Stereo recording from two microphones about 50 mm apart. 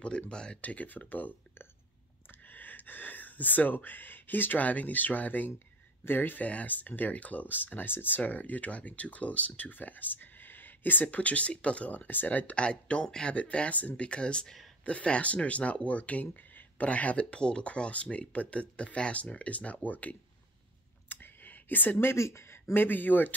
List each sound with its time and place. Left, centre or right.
0.3 s speech: centre
0.6 s speech: left
2.4 s speech: left
8.2 s speech: left
21.1 s a sound: left
21.9 s speech: left
22.8 s speech: left